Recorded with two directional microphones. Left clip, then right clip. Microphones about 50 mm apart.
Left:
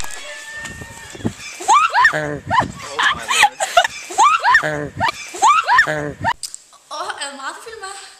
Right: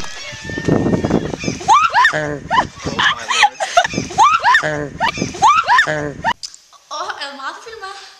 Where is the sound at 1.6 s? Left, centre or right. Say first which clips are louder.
Right 1 dB; centre.